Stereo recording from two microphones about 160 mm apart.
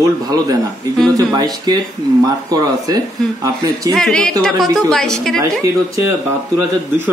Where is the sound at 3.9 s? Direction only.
5° left (ahead or behind).